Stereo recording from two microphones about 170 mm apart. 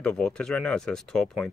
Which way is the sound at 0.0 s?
5° left (ahead or behind).